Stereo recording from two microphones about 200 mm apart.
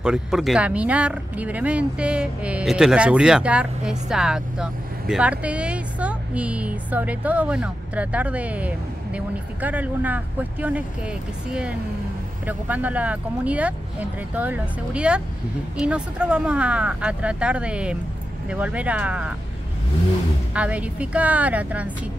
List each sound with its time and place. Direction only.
0.0 s speech: 5° right (ahead or behind)
12.4 s speech: 10° right (ahead or behind)
20.5 s speech: 5° right (ahead or behind)